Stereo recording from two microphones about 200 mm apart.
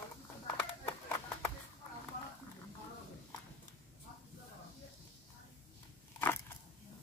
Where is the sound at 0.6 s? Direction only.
15° left (ahead or behind).